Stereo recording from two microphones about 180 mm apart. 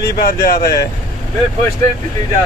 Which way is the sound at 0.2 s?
55° left (ahead or behind).